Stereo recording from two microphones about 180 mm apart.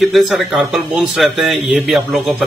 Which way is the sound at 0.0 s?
Centre (ahead or behind).